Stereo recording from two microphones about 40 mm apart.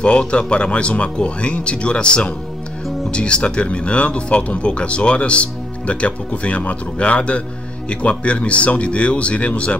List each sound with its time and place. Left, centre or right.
0.0 s speech: left